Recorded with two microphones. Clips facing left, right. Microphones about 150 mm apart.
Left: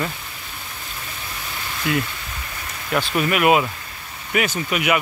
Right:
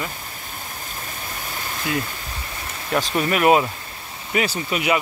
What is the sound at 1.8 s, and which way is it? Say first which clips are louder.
Speech: left 3 dB; 25° right (ahead or behind).